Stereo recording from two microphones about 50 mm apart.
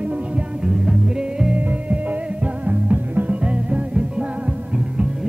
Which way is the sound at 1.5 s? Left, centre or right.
Right.